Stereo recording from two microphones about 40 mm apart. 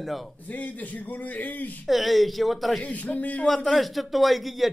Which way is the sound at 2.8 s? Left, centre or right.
Left.